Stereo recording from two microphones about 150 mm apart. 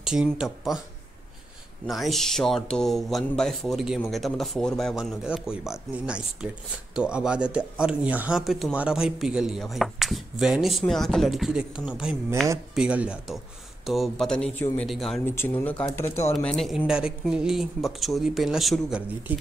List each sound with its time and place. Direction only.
0.0 s speech: 5° right (ahead or behind)
1.9 s speech: centre (ahead or behind)
15.2 s speech: 15° left (ahead or behind)
16.3 s speech: centre (ahead or behind)